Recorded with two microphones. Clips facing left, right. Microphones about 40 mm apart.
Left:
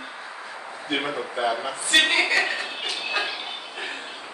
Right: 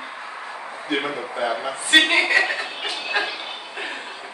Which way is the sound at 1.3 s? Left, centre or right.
Centre.